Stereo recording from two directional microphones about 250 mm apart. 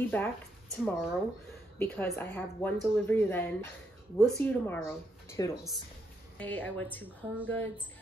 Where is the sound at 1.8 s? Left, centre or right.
Centre.